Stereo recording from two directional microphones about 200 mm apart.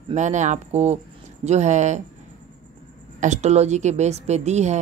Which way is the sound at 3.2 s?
35° right (ahead or behind).